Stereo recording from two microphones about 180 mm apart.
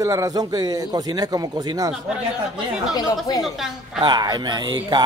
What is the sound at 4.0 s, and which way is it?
A man's voice, 25° right (ahead or behind).